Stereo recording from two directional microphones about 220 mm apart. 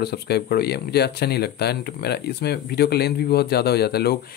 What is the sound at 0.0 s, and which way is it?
Speech, 45° left (ahead or behind).